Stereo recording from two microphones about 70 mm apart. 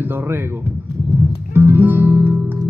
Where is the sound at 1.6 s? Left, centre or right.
Right.